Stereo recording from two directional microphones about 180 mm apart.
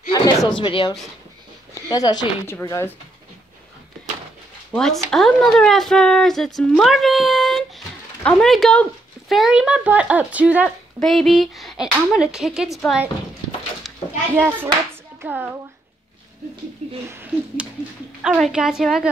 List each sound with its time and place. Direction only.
0.1 s speech: 25° left (ahead or behind)
4.7 s speech: centre (ahead or behind)
13.9 s children playing: centre (ahead or behind)
14.3 s speech: 10° right (ahead or behind)
17.1 s speech: 10° right (ahead or behind)